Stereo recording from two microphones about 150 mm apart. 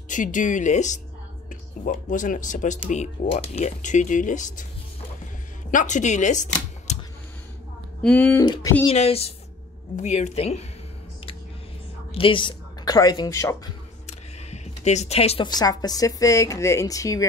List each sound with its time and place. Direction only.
0.1 s speech: 60° left (ahead or behind)
2.9 s speech: 45° left (ahead or behind)
5.7 s speech: 55° left (ahead or behind)
8.0 s speech: 10° left (ahead or behind)
8.4 s speech: 20° left (ahead or behind)
8.8 s a woman's voice: 40° left (ahead or behind)
12.1 s speech: 35° left (ahead or behind); by 13.6 s 20° left (ahead or behind)
14.0 s speech: 50° left (ahead or behind); by 17.3 s 20° left (ahead or behind)